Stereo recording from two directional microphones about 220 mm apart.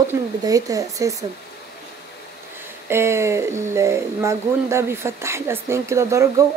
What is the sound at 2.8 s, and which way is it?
Speech, 10° right (ahead or behind).